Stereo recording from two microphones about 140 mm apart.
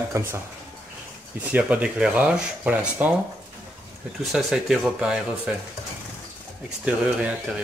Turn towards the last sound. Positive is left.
turn(degrees=-10)  # may be behind; listen again after turning